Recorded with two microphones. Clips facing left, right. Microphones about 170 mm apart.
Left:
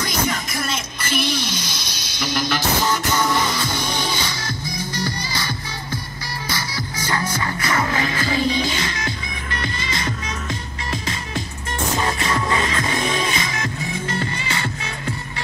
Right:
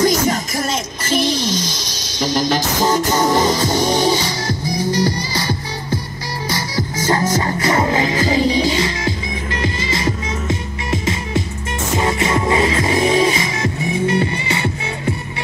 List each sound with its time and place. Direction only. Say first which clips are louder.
0.0 s music: right 8 dB; 45° right (ahead or behind)
1.1 s a sound: right 6 dB; 40° right (ahead or behind)
2.1 s music: right 6 dB; 40° right (ahead or behind)
7.0 s music: right 7 dB; 40° right (ahead or behind)
7.5 s music: right 4 dB; 25° right (ahead or behind)
8.6 s music: right 7 dB; 30° right (ahead or behind)